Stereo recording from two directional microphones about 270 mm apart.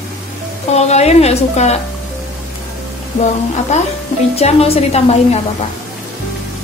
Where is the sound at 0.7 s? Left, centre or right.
Left.